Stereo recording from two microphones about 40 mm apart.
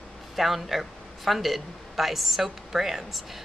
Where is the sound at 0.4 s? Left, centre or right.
Centre.